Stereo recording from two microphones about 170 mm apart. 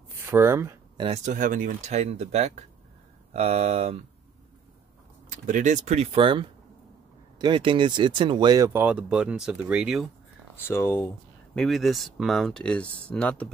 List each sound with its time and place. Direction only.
0.3 s speech: 15° right (ahead or behind)
1.0 s speech: 40° right (ahead or behind)
5.5 s speech: 45° right (ahead or behind); by 10.0 s 5° right (ahead or behind)
10.6 s speech: 15° left (ahead or behind)
11.5 s speech: centre (ahead or behind)